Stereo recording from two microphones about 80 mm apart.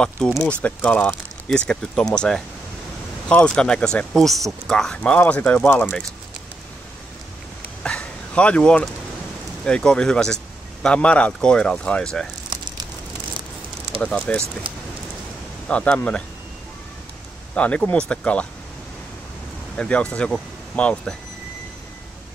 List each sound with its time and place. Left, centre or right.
0.5 s speech: centre
7.8 s bow-wow: centre
9.7 s speech: centre
14.0 s speech: centre
15.7 s speech: centre
17.6 s speech: centre
19.8 s speech: centre